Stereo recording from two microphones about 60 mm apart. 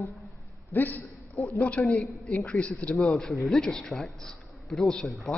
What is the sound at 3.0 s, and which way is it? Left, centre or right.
A man's voice, centre.